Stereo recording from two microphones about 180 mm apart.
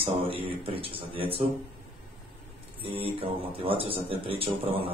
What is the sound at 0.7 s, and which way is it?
Speech, 30° right (ahead or behind).